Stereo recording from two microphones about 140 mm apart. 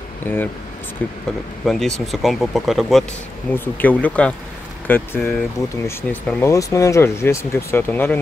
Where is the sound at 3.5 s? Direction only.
15° left (ahead or behind).